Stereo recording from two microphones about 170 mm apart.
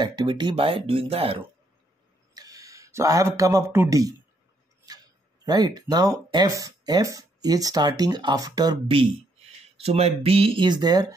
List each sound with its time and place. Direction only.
0.0 s speech: 25° right (ahead or behind)
2.3 s speech: 20° right (ahead or behind)